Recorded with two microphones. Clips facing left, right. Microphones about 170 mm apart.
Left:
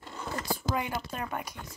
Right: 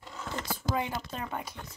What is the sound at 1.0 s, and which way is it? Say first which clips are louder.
Speech: left 1 dB; 25° right (ahead or behind).